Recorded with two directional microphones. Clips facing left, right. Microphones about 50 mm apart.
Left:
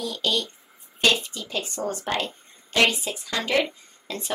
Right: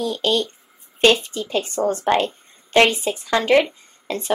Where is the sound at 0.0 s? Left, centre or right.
Right.